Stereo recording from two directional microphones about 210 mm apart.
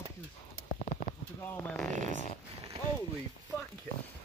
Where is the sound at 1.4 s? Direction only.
10° left (ahead or behind).